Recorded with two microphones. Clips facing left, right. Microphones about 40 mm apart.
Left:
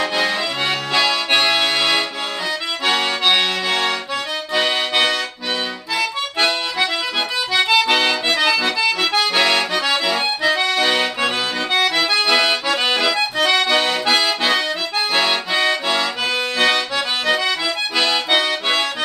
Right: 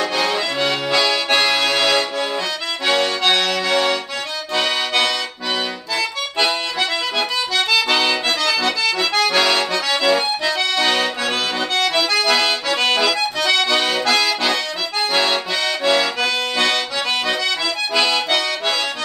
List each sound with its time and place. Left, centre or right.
0.1 s accordion: centre
6.3 s accordion: centre
17.9 s accordion: centre